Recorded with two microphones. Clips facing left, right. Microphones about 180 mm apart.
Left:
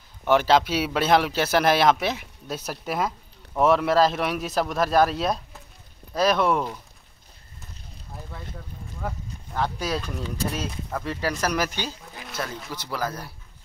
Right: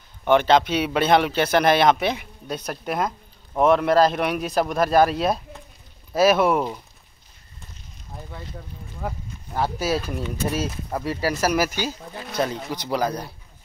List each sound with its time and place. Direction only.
0.2 s speech: 5° left (ahead or behind)
8.1 s speech: centre (ahead or behind); by 13.3 s 20° right (ahead or behind)